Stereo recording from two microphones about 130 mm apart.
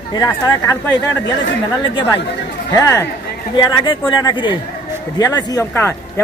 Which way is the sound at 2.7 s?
20° left (ahead or behind).